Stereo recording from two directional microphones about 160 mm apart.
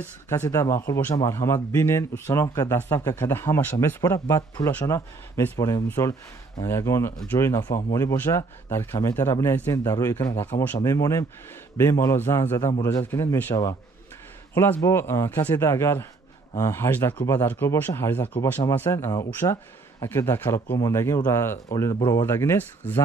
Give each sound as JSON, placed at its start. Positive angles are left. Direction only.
{"t": 0.3, "sound": "speech", "side_deg": 20}